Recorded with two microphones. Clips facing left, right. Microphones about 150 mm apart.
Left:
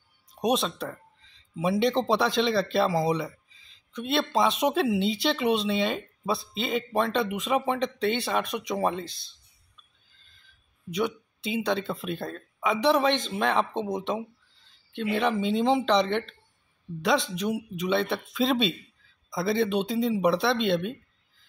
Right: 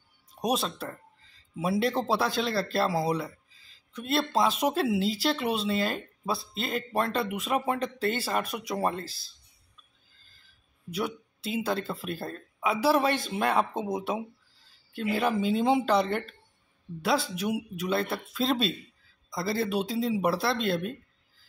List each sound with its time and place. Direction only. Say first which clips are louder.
0.3 s speech: left 3 dB; centre (ahead or behind)
10.9 s speech: left 4 dB; 5° right (ahead or behind)